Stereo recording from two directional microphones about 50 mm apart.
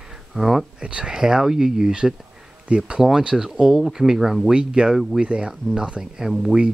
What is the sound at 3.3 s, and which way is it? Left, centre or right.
Speech, centre.